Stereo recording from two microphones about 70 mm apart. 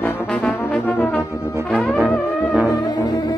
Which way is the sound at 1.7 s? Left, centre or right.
Left.